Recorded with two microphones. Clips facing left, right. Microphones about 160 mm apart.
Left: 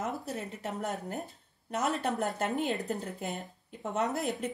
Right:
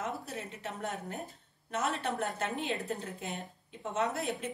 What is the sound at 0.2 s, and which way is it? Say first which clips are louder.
A woman's voice: left 4 dB; 40° left (ahead or behind).